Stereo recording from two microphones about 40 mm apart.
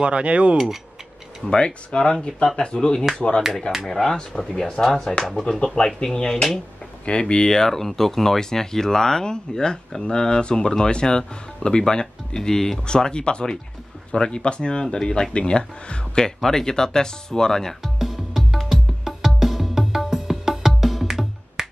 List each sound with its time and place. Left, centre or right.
0.0 s speech: right
1.5 s speech: left
3.8 s speech: centre
4.9 s speech: left
7.1 s speech: left
16.3 s speech: centre
17.8 s music: centre